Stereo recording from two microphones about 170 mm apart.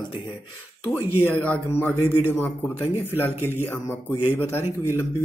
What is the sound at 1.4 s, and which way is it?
A man's voice, 10° left (ahead or behind).